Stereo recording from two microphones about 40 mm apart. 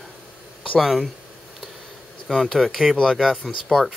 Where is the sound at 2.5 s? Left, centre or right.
Centre.